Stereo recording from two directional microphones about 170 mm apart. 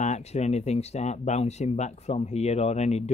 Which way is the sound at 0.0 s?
40° left (ahead or behind).